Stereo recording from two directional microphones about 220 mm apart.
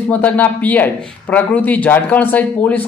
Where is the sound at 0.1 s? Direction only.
5° left (ahead or behind).